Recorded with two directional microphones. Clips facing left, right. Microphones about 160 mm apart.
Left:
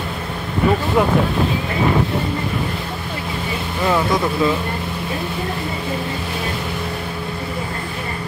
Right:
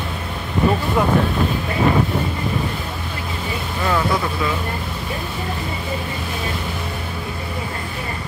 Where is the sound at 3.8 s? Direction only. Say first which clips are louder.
Left 2 dB; 20° left (ahead or behind).